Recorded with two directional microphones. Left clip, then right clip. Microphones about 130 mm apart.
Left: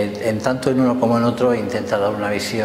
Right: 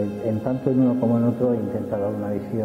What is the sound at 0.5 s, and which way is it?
A man's voice, 25° right (ahead or behind).